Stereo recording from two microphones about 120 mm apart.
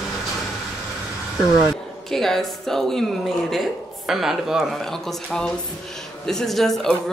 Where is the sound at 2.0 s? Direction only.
5° left (ahead or behind).